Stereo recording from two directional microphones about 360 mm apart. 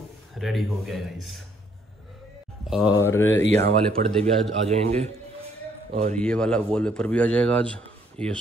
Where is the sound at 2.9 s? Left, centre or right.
Centre.